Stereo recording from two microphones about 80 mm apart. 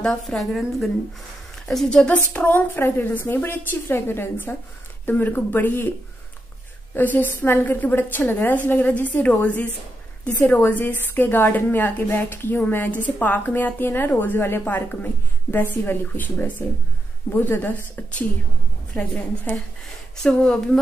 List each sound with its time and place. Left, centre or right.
0.0 s a woman's voice: centre
2.1 s a woman's voice: left